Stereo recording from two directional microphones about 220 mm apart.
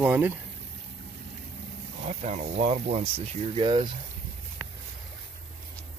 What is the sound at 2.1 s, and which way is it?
Speech, 30° right (ahead or behind).